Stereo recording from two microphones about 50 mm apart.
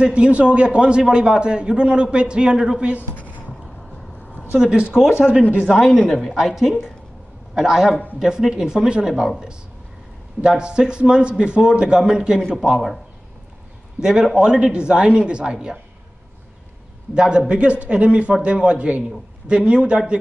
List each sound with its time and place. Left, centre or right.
0.0 s a man's voice: right
3.0 s a sound: left
4.6 s a man's voice: centre
5.7 s a woman's voice: centre
10.4 s a man's voice: centre
13.9 s a man's voice: centre
17.1 s a man's voice: centre